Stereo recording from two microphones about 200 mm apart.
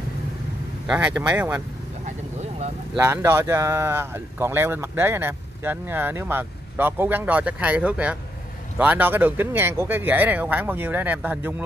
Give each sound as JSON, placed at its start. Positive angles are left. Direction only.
{"t": 0.8, "sound": "speech", "side_deg": -5}
{"t": 3.0, "sound": "speech", "side_deg": -10}